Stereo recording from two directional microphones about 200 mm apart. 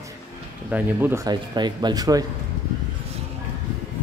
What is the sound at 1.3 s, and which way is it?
Speech, 20° right (ahead or behind).